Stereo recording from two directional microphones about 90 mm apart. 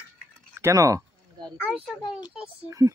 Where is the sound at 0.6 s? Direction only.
35° right (ahead or behind).